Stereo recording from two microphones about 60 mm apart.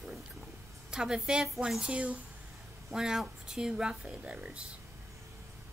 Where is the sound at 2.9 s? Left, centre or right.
Centre.